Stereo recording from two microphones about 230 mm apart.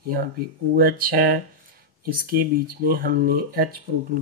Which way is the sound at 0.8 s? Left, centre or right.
Right.